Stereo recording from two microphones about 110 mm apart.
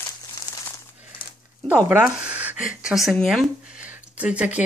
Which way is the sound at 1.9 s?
15° right (ahead or behind).